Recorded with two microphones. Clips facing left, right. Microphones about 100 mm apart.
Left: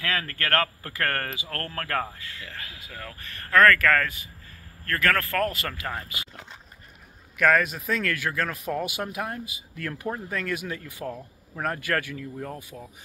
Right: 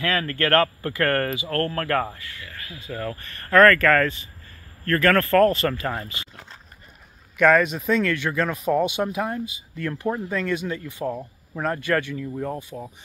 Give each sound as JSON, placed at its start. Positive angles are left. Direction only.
{"t": 0.0, "sound": "speech", "side_deg": 5}
{"t": 2.2, "sound": "speech", "side_deg": 15}
{"t": 3.2, "sound": "speech", "side_deg": 0}
{"t": 12.7, "sound": "speech", "side_deg": -15}